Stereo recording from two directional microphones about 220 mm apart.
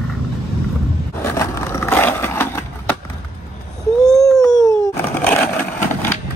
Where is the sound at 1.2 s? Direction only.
15° left (ahead or behind).